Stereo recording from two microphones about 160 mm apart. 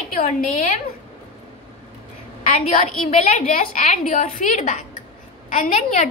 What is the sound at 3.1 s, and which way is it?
A woman's voice, 45° left (ahead or behind).